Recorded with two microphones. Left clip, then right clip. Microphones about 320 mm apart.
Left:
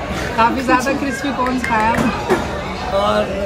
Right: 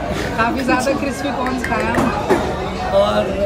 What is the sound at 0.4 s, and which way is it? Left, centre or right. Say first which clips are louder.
Speech: left 3 dB; left.